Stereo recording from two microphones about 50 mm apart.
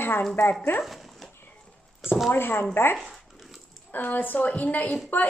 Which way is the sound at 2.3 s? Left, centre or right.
Left.